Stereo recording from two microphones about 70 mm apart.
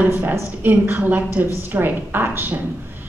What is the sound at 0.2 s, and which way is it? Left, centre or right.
A woman's voice, right.